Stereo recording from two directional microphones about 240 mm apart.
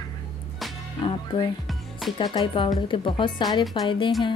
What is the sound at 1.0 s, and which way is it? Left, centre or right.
Speech, centre.